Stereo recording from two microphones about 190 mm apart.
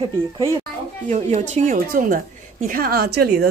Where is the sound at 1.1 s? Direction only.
40° right (ahead or behind).